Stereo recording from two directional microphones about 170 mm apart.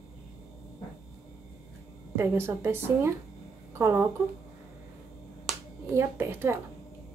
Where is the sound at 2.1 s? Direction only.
15° right (ahead or behind).